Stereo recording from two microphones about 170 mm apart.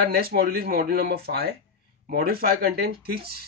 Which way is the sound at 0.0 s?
65° right (ahead or behind).